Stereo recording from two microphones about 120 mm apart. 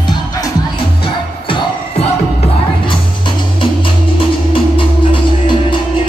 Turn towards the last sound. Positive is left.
turn(degrees=45)  # may be behind; listen again after turning